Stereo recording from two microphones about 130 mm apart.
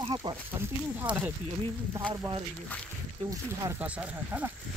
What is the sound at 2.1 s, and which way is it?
Speech, 35° right (ahead or behind).